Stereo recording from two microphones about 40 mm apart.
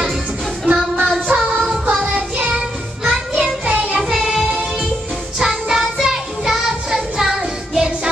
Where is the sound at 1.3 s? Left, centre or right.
Right.